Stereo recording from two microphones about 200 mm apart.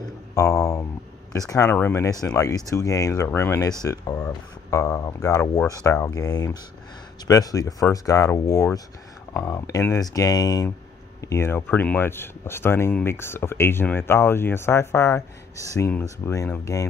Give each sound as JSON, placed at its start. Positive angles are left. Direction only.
{"t": 0.3, "sound": "speech", "side_deg": 15}